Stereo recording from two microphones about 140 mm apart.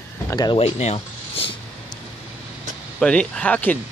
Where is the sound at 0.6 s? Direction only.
45° left (ahead or behind).